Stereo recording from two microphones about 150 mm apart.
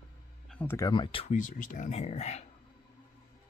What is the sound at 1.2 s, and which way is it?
Speech, 60° left (ahead or behind).